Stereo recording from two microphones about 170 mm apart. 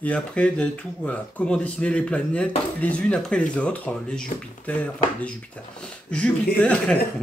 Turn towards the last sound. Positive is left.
turn(degrees=5)  # may be behind; listen again after turning